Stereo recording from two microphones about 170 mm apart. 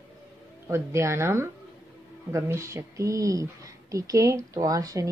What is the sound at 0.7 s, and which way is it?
A woman's voice, 15° right (ahead or behind).